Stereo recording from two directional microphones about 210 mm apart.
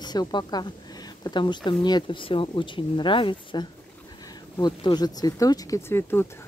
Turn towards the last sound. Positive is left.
turn(degrees=10)  # may be behind; listen again after turning